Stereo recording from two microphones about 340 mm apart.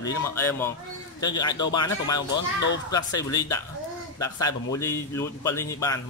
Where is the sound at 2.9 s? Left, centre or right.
Centre.